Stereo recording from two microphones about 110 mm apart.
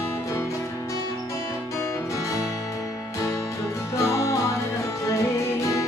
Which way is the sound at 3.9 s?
25° left (ahead or behind).